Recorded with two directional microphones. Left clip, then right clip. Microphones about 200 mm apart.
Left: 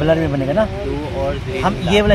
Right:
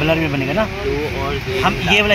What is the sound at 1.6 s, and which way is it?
Speech, 40° left (ahead or behind).